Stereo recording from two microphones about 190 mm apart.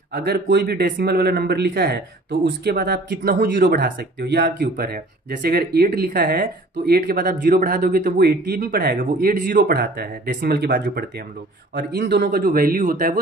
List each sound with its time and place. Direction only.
0.1 s speech: 60° right (ahead or behind)